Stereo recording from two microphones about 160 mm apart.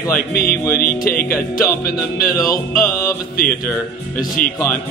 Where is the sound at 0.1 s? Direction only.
70° left (ahead or behind).